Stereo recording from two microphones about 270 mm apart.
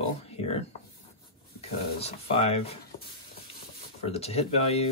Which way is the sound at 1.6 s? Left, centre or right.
Left.